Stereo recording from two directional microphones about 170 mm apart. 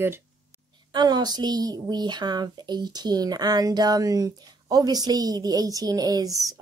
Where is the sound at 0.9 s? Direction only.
25° right (ahead or behind).